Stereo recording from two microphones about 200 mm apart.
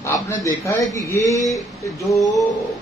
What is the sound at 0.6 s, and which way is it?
Speech, 15° left (ahead or behind).